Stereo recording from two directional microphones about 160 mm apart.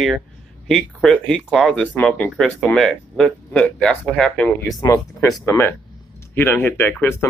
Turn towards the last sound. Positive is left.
turn(degrees=10)  # may be behind; listen again after turning